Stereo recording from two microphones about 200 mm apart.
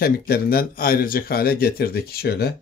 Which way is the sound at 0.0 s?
50° left (ahead or behind).